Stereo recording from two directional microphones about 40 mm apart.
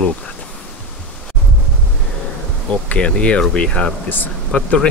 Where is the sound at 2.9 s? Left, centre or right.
Left.